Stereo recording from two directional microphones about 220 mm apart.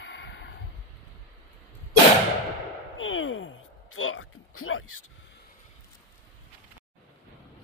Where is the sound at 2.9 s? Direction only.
65° left (ahead or behind).